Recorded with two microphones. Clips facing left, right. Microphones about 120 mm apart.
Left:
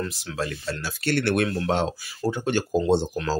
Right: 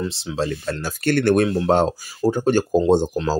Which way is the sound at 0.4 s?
25° right (ahead or behind).